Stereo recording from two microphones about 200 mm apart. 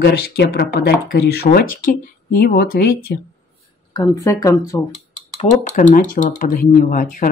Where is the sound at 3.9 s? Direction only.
15° left (ahead or behind).